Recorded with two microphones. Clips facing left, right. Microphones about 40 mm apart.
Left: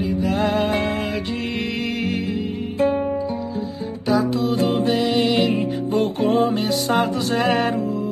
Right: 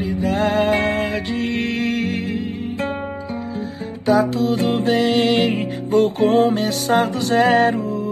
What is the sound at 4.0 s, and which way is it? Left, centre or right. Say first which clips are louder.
Music: right 3 dB; right.